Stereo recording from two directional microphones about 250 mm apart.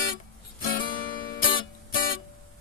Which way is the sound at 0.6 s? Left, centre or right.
Left.